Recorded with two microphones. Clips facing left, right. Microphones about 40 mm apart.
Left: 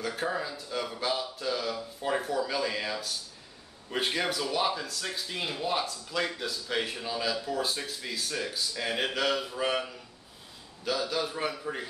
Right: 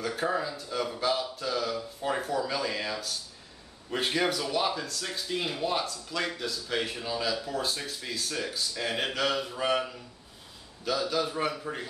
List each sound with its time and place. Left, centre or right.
0.0 s speech: centre